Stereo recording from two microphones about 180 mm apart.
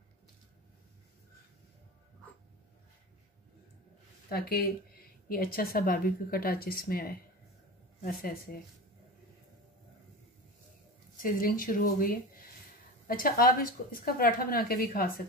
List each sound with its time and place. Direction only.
4.3 s a woman's voice: 55° left (ahead or behind)
11.2 s a woman's voice: 50° left (ahead or behind)